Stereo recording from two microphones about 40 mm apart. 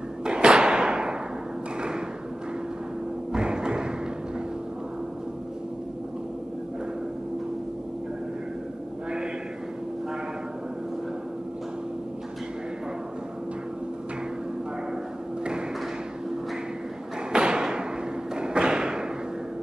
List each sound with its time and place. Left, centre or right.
0.2 s thump: right
3.3 s thump: right
17.3 s thump: right